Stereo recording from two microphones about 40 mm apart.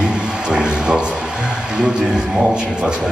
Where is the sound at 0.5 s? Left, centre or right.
Right.